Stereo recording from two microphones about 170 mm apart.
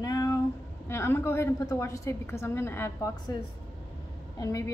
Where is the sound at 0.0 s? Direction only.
20° left (ahead or behind).